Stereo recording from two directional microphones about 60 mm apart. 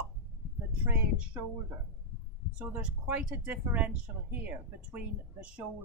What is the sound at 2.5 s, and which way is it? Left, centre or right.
Speech, right.